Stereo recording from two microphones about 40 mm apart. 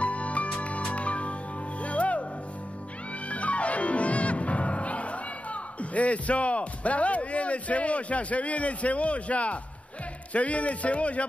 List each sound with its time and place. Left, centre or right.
0.0 s music: left
3.3 s music: left
10.3 s a man's voice: left